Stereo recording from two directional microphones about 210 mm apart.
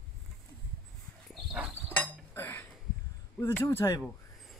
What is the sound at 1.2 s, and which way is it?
Horse, 5° right (ahead or behind).